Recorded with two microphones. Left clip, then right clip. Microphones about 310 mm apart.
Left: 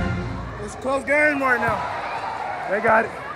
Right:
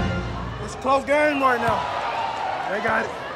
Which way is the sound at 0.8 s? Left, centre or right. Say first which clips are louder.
Even; centre.